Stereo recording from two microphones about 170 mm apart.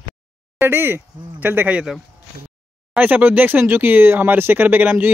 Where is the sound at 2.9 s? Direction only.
10° right (ahead or behind).